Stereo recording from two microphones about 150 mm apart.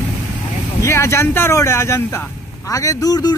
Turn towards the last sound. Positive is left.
turn(degrees=25)  # may be behind; listen again after turning